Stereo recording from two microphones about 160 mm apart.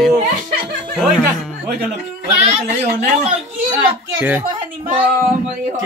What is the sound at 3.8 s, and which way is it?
Speech, 10° right (ahead or behind).